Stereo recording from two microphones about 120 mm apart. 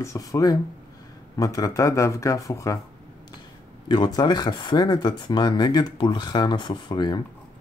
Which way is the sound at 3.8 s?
40° left (ahead or behind).